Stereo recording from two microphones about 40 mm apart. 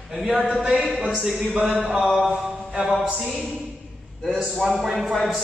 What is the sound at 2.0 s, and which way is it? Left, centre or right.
Speech, centre.